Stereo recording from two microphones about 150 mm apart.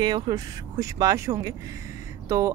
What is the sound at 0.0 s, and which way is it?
Speech, 25° right (ahead or behind).